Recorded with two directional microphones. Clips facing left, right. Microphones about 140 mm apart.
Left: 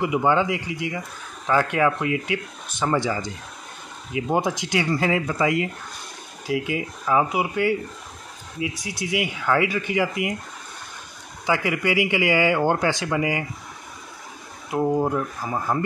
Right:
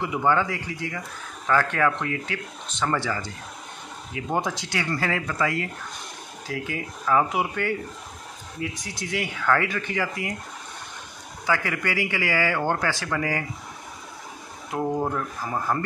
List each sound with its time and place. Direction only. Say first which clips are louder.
0.0 s a man's voice: left 3 dB; 15° left (ahead or behind)
11.4 s a man's voice: left 3 dB; 15° left (ahead or behind)
14.7 s a man's voice: left 4 dB; 5° left (ahead or behind)